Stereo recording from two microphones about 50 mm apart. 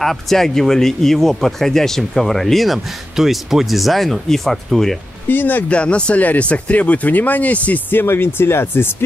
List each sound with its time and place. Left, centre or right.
0.0 s speech: centre
5.3 s speech: left
5.7 s speech: left
7.9 s speech: left